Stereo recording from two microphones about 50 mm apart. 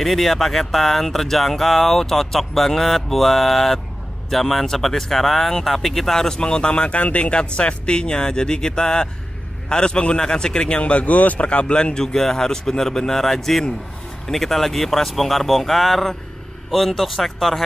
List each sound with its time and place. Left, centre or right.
0.0 s speech: centre